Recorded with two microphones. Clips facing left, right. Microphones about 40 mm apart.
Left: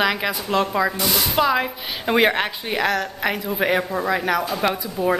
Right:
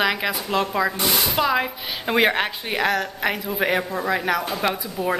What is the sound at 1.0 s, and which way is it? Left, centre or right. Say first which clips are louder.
Speech: even; centre.